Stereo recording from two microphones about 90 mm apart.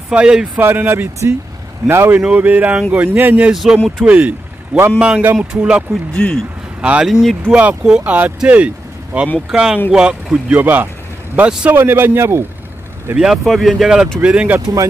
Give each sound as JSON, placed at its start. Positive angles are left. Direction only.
{"t": 0.1, "sound": "speech", "side_deg": -10}
{"t": 0.6, "sound": "speech", "side_deg": -25}
{"t": 5.2, "sound": "speech", "side_deg": -25}
{"t": 5.6, "sound": "speech", "side_deg": -10}
{"t": 7.1, "sound": "speech", "side_deg": 0}
{"t": 7.4, "sound": "speech", "side_deg": -15}
{"t": 11.7, "sound": "speech", "side_deg": -25}
{"t": 13.1, "sound": "speech", "side_deg": -5}